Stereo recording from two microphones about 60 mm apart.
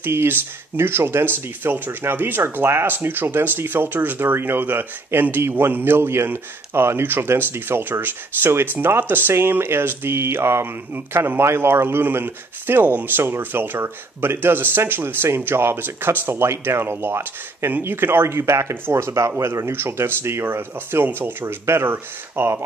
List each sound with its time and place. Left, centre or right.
0.0 s speech: right
19.7 s speech: right